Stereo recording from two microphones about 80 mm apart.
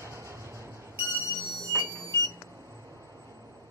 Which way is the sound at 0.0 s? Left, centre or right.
Right.